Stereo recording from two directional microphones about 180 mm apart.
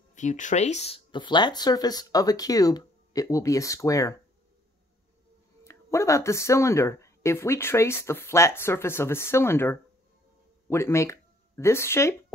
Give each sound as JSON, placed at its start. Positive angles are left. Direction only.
{"t": 0.1, "sound": "speech", "side_deg": 45}
{"t": 5.6, "sound": "speech", "side_deg": 15}